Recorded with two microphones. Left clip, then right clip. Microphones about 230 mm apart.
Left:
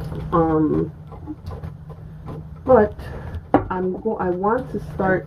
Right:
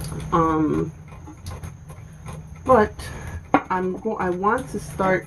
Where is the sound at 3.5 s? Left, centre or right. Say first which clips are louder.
Left 1 dB; centre.